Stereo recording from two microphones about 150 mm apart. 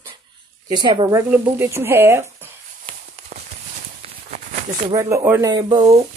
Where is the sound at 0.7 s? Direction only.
35° right (ahead or behind).